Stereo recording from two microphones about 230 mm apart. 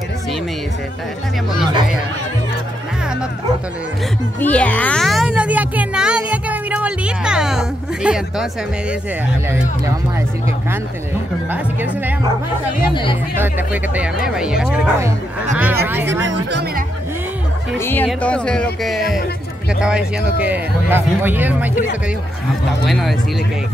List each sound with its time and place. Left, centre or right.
4.4 s a sound: centre
14.2 s speech: centre
16.1 s speech: right
17.7 s speech: centre
22.8 s speech: centre